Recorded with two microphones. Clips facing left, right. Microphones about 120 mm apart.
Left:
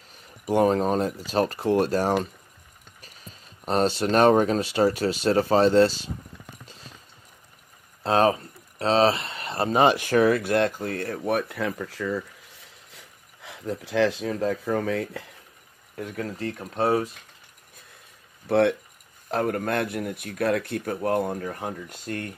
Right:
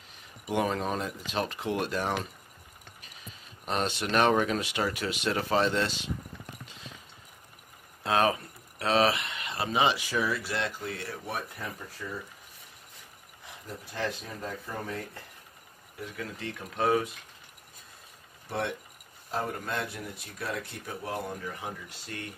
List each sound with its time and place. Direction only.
0.5 s speech: 35° left (ahead or behind)
8.0 s speech: 30° left (ahead or behind); by 15.2 s 90° left
16.0 s speech: 40° left (ahead or behind)
18.5 s speech: 65° left (ahead or behind)